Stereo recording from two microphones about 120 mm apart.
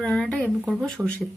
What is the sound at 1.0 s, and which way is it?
Speech, 15° right (ahead or behind).